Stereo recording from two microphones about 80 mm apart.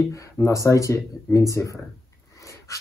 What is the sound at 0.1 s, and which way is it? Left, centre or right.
Speech, left.